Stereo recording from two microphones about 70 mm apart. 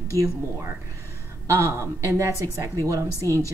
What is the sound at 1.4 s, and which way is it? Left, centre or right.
Speech, right.